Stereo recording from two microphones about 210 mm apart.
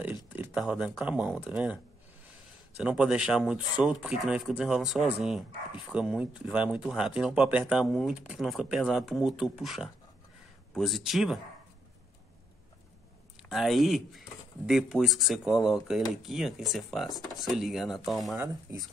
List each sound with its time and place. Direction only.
0.0 s speech: 10° right (ahead or behind)
2.8 s speech: 5° right (ahead or behind)
13.4 s speech: centre (ahead or behind)
18.4 s speech: 15° right (ahead or behind)